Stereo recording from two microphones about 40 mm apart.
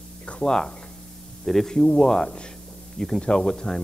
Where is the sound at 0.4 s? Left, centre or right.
Centre.